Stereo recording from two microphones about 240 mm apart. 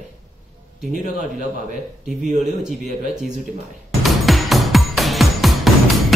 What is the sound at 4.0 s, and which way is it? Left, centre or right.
Music, centre.